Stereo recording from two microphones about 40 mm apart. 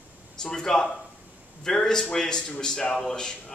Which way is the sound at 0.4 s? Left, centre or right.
Centre.